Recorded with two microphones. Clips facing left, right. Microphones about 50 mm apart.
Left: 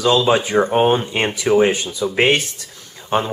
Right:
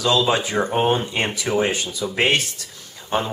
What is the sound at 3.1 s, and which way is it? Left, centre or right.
Speech, left.